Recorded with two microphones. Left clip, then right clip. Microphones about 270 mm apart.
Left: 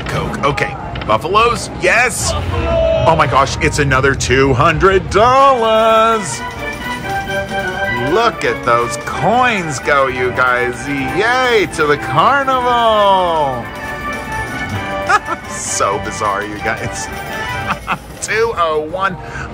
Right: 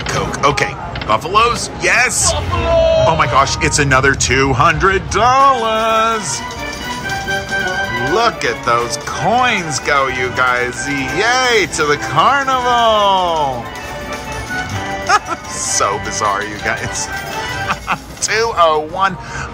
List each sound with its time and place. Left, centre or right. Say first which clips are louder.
0.1 s speech: right 2 dB; centre
8.1 s speech: left 1 dB; centre
15.1 s speech: even; centre